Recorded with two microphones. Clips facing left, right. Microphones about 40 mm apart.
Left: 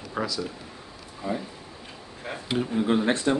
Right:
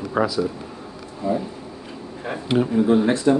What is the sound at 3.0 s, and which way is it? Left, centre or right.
Speech, left.